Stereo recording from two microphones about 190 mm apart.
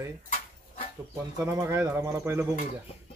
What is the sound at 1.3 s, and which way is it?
Speech, 15° right (ahead or behind).